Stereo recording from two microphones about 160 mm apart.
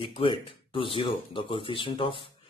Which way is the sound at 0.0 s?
35° left (ahead or behind).